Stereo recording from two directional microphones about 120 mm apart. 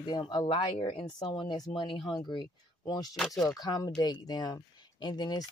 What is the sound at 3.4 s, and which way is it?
Speech, 30° left (ahead or behind).